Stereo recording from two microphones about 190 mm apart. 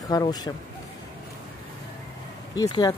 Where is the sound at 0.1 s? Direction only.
20° left (ahead or behind).